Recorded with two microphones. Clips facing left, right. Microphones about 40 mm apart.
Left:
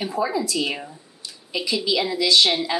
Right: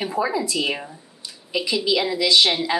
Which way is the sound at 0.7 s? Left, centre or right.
Centre.